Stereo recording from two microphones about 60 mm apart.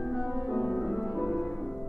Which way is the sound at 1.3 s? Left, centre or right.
Centre.